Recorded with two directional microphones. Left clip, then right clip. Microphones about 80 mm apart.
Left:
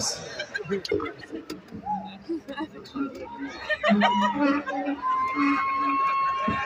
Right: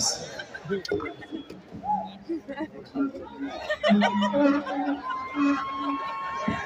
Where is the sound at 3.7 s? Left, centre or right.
Centre.